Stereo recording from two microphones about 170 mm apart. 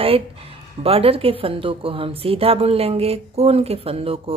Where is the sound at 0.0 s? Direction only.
35° right (ahead or behind).